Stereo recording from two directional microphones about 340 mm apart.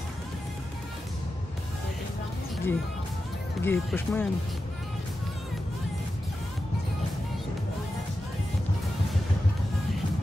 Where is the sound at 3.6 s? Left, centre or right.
Centre.